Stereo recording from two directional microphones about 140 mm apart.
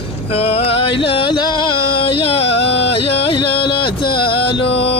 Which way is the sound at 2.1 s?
45° left (ahead or behind).